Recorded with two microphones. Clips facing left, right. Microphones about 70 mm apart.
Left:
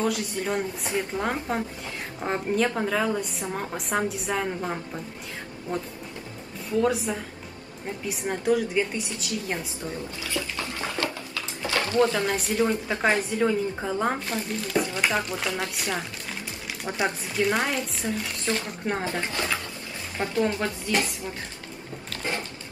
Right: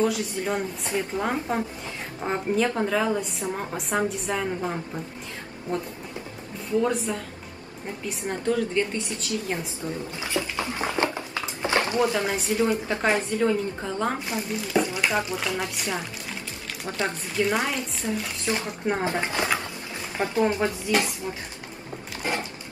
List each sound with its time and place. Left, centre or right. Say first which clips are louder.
0.0 s a woman's voice: right 2 dB; centre
6.8 s a woman's voice: left 2 dB; centre
10.2 s a sound: right 4 dB; right
12.0 s a woman's voice: left 1 dB; centre
14.3 s a woman's voice: right 1 dB; centre
16.8 s speech: left 1 dB; centre
17.4 s a woman's voice: even; centre
19.0 s a woman's voice: right 3 dB; right
22.1 s a sound: right 2 dB; centre